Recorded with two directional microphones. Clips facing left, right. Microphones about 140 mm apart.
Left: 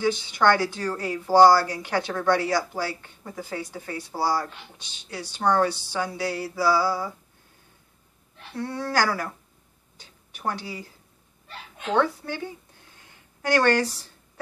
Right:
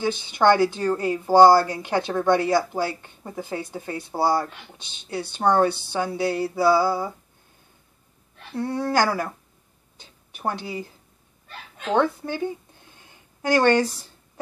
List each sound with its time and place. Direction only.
0.3 s a woman's voice: 25° right (ahead or behind)
5.7 s speech: 55° right (ahead or behind)
5.9 s a woman's voice: 25° right (ahead or behind)
8.5 s a woman's voice: 20° right (ahead or behind)
10.3 s a woman's voice: 20° right (ahead or behind)
11.9 s a woman's voice: 20° right (ahead or behind)
13.6 s a woman's voice: 20° right (ahead or behind)